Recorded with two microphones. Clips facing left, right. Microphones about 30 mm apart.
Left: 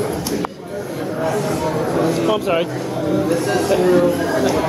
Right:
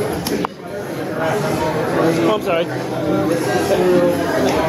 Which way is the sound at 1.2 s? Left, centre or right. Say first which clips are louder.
Right 1 dB; right.